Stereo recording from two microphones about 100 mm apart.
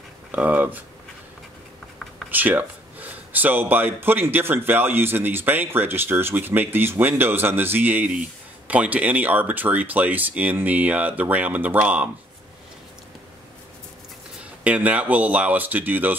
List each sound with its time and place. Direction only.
0.3 s speech: 15° right (ahead or behind)
2.3 s speech: 15° right (ahead or behind)
14.6 s speech: 15° right (ahead or behind)